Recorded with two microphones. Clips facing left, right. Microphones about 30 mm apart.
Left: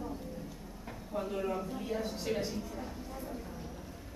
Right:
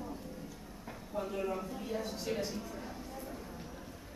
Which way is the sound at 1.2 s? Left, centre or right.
Centre.